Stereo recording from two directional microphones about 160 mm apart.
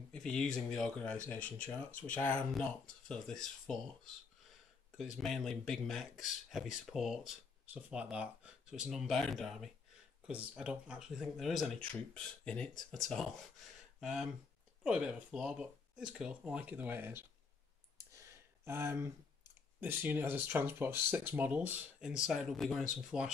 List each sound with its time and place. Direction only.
0.1 s speech: 5° left (ahead or behind)
5.1 s speech: centre (ahead or behind); by 17.2 s 15° right (ahead or behind)
17.9 s clicking: 15° right (ahead or behind)
19.8 s speech: 10° right (ahead or behind)